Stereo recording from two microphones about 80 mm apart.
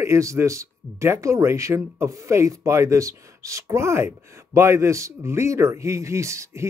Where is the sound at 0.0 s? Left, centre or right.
Right.